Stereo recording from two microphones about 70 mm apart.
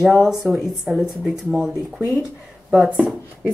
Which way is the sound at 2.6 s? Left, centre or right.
Centre.